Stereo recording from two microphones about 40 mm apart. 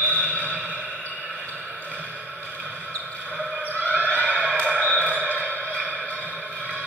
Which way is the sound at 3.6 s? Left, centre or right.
Left.